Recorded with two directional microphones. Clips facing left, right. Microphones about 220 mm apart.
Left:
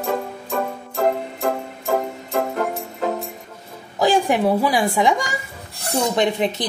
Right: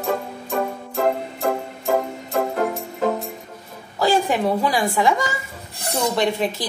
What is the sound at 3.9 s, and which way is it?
A woman's voice, 15° left (ahead or behind).